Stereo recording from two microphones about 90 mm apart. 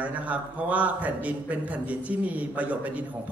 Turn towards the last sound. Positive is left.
turn(degrees=-15)  # may be behind; listen again after turning